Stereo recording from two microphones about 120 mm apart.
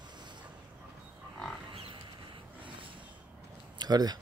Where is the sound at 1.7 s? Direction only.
50° right (ahead or behind).